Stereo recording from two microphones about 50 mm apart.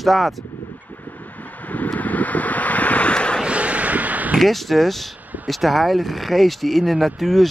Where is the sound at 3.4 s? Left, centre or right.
Right.